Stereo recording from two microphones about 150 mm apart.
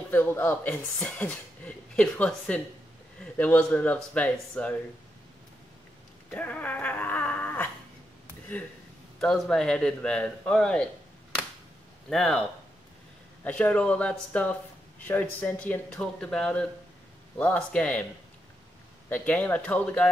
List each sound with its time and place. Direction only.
0.1 s speech: 15° left (ahead or behind)
6.3 s dog: 10° left (ahead or behind)
9.2 s a man's voice: 5° left (ahead or behind)
12.1 s a man's voice: 5° left (ahead or behind)
19.0 s speech: 10° left (ahead or behind)